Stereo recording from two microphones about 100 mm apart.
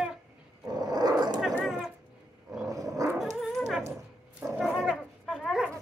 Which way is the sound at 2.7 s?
35° right (ahead or behind).